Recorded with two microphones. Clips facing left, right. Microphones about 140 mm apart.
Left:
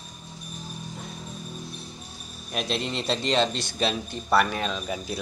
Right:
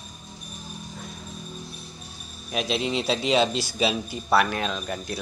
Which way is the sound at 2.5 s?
Centre (ahead or behind).